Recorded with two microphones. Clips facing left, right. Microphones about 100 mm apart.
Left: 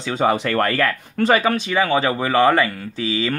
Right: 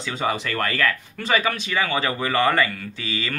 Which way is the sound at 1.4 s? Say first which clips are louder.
Left 6 dB; 35° left (ahead or behind).